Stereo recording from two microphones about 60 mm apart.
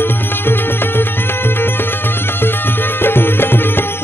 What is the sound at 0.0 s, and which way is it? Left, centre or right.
Music, left.